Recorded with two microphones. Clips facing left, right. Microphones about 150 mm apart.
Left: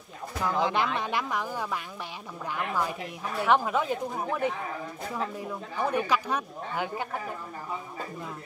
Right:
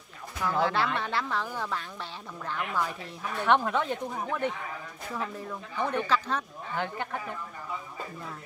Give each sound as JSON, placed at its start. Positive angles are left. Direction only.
{"t": 0.4, "sound": "speech", "side_deg": 15}